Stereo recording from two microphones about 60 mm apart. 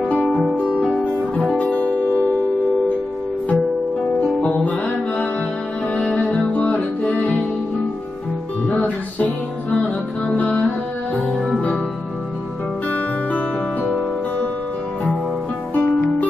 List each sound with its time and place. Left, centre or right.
0.5 s music: centre
0.8 s guitar: centre
4.2 s music: left
8.6 s music: left
11.3 s music: centre
12.9 s music: left
15.7 s music: left